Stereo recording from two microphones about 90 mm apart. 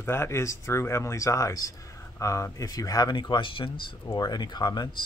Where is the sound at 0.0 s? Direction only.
30° left (ahead or behind); by 4.2 s 70° left (ahead or behind).